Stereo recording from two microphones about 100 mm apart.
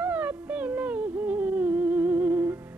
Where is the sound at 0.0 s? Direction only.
15° right (ahead or behind).